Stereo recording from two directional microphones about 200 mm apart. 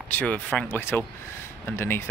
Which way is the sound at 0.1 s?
10° left (ahead or behind).